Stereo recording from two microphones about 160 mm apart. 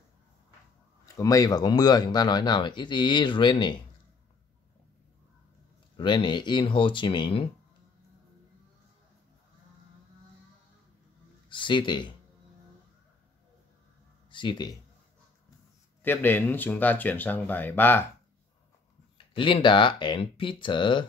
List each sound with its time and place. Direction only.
1.0 s speech: 20° left (ahead or behind)
5.9 s speech: 30° left (ahead or behind)
11.4 s speech: 30° left (ahead or behind)
14.3 s speech: 30° left (ahead or behind)
16.0 s speech: 10° left (ahead or behind)
19.1 s speech: 30° left (ahead or behind)